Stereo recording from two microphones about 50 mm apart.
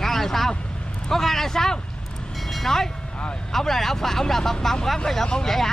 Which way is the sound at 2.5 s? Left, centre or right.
Centre.